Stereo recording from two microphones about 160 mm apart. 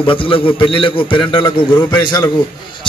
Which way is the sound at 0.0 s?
35° left (ahead or behind).